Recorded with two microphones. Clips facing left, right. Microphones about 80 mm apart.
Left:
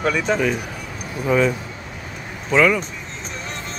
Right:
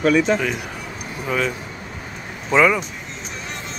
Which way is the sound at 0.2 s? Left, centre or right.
Centre.